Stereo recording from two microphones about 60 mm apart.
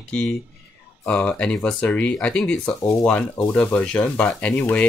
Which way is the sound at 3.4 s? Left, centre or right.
Left.